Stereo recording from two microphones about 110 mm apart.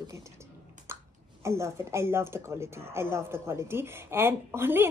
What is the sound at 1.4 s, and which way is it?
Speech, 25° right (ahead or behind).